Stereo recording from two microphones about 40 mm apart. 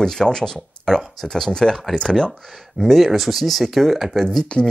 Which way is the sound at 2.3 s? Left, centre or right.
Centre.